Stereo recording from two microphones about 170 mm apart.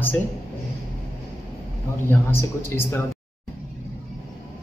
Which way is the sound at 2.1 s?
15° left (ahead or behind).